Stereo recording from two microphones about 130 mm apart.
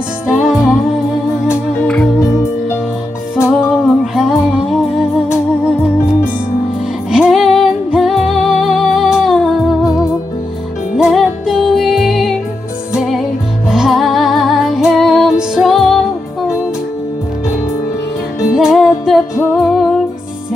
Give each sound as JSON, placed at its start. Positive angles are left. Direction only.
{"t": 0.3, "sound": "music", "side_deg": -5}
{"t": 3.3, "sound": "music", "side_deg": 20}
{"t": 4.0, "sound": "music", "side_deg": -5}
{"t": 7.1, "sound": "music", "side_deg": -5}
{"t": 18.5, "sound": "music", "side_deg": -5}